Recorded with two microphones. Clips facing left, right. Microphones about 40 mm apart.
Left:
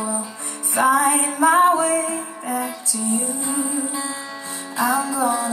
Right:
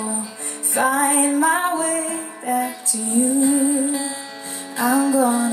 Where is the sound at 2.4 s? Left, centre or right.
Right.